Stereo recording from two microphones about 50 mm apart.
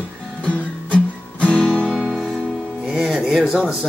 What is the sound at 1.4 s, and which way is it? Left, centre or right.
Music, centre.